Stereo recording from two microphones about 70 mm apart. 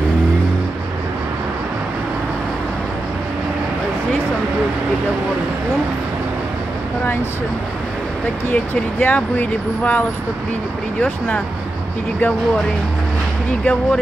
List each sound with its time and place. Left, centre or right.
9.0 s speech: left
13.5 s speech: centre